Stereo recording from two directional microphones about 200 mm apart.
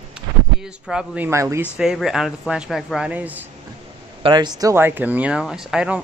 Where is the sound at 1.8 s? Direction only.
Centre (ahead or behind).